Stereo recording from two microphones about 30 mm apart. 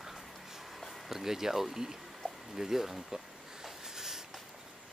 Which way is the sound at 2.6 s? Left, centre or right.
Centre.